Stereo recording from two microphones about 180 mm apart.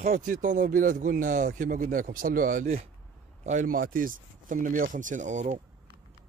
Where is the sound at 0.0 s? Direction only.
50° right (ahead or behind).